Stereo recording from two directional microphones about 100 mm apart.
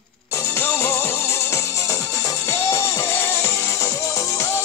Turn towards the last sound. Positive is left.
turn(degrees=30)  # may be behind; listen again after turning